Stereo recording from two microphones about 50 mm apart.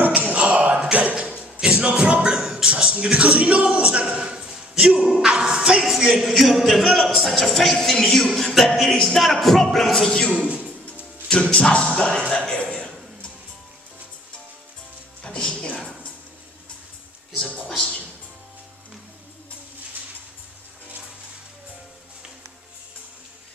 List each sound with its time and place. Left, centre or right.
0.0 s a sound: right
0.8 s music: right
2.2 s beatboxing: centre
2.9 s speech: right
4.2 s a sound: centre
5.0 s speech: centre
5.9 s music: centre
6.3 s speech: centre
8.5 s music: centre
9.2 s speech: centre
11.5 s music: centre
12.3 s a man's voice: left
15.2 s music: centre